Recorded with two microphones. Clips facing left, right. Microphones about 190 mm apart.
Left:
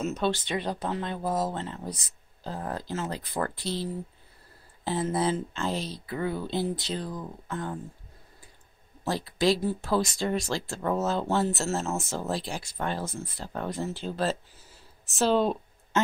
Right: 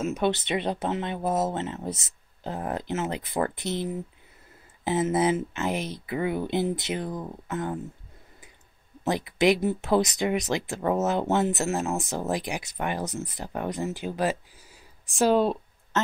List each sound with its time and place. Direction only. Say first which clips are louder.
0.0 s speech: right 2 dB; 15° right (ahead or behind)
9.0 s speech: right 3 dB; 20° right (ahead or behind)